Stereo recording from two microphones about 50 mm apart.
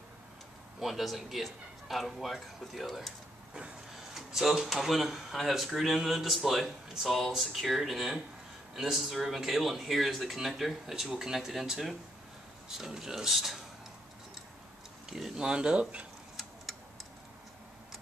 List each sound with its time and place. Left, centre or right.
0.7 s speech: centre
4.1 s speech: centre
15.0 s speech: centre